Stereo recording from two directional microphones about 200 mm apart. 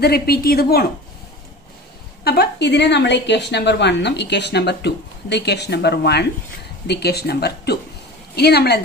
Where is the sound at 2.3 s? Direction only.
55° left (ahead or behind).